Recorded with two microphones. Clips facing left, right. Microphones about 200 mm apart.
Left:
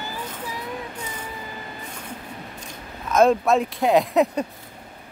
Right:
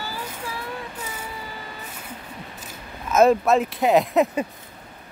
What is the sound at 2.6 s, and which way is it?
Speech, 5° right (ahead or behind).